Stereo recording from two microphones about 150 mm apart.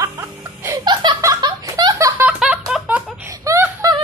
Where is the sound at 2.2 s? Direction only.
5° right (ahead or behind).